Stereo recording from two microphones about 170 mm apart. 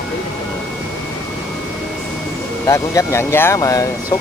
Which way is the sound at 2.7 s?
20° left (ahead or behind).